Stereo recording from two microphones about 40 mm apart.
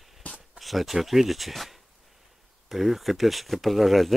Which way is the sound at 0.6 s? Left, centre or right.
Centre.